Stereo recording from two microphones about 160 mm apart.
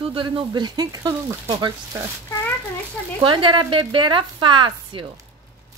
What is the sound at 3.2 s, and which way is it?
Speech, 30° right (ahead or behind).